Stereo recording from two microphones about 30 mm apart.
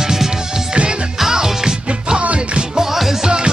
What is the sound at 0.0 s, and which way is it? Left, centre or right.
Music, centre.